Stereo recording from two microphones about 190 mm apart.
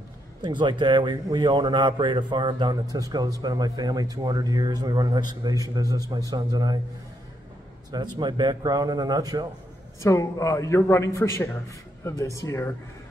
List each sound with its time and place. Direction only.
0.4 s speech: 25° right (ahead or behind)
7.9 s speech: 25° right (ahead or behind)
10.0 s a man's voice: 15° left (ahead or behind)